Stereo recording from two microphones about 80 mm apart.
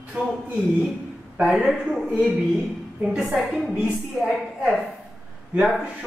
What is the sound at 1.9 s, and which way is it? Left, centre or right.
A woman's voice, centre.